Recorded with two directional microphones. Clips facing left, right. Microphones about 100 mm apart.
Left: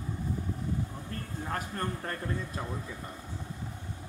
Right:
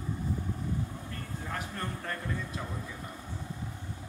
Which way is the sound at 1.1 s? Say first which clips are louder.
Left 3 dB; 40° left (ahead or behind).